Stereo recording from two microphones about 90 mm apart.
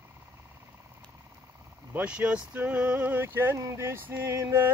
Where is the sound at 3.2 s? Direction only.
30° right (ahead or behind).